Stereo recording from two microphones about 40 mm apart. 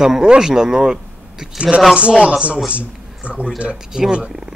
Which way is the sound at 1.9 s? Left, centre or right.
Right.